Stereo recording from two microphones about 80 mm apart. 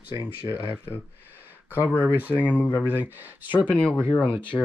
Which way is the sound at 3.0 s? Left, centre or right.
Right.